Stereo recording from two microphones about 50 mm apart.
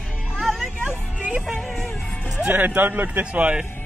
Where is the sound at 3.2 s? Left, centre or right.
Right.